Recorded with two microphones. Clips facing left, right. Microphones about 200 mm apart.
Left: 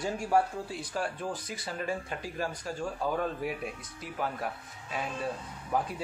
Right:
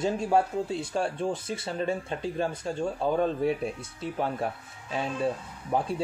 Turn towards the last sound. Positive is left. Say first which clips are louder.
# right 3 dB
turn(degrees=-25)  # may be behind; listen again after turning